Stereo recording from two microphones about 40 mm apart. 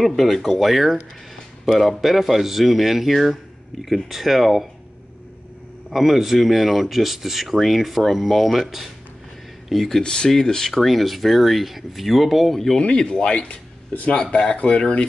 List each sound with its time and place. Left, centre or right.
0.0 s speech: centre
5.9 s speech: centre
10.0 s speech: left; by 12.5 s centre
12.5 s speech: centre
12.8 s speech: left